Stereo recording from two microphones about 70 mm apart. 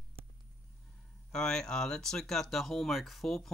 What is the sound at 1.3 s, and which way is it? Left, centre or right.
Speech, centre.